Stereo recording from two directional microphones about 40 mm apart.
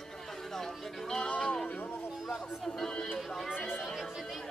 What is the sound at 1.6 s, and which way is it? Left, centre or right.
Music, left.